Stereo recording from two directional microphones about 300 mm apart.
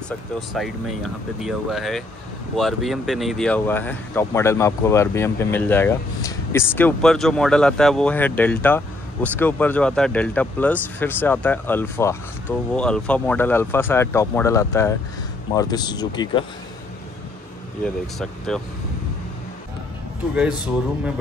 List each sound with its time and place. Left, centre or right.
0.5 s speech: centre
17.8 s speech: centre